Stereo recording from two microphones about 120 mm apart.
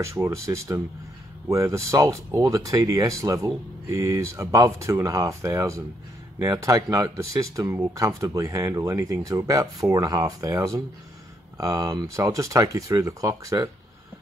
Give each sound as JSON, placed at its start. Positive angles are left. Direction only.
{"t": 0.0, "sound": "speech", "side_deg": -25}